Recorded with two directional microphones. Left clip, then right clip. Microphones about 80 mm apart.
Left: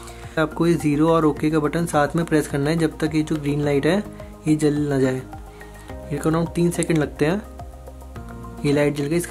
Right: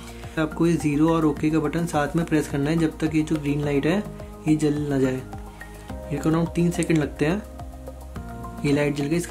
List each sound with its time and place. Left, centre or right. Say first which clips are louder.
0.3 s speech: left 3 dB; left
8.6 s speech: left 3 dB; left